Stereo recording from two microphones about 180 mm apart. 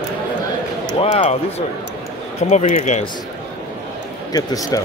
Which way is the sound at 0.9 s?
35° left (ahead or behind).